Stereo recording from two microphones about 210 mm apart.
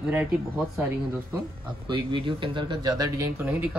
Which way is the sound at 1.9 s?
25° right (ahead or behind).